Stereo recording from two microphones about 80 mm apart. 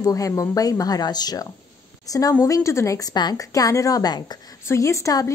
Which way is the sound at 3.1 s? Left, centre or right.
Left.